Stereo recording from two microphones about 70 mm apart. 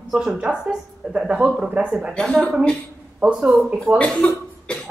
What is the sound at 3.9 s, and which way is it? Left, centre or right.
Speech, right.